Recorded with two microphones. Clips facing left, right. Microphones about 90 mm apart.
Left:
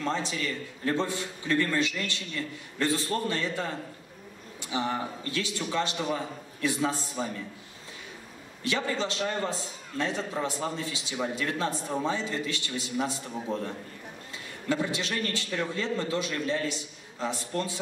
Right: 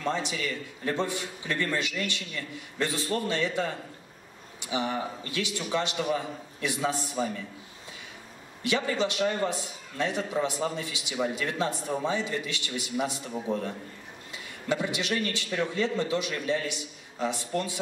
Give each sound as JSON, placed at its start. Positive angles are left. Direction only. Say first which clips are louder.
{"t": 0.0, "sound": "a man's voice", "louder": "even", "side_deg": -20}
{"t": 8.6, "sound": "a man's voice", "louder": "right 2 dB", "side_deg": -20}
{"t": 14.7, "sound": "a man's voice", "louder": "right 1 dB", "side_deg": -20}